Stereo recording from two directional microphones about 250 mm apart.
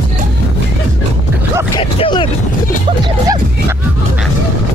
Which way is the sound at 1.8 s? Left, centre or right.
Centre.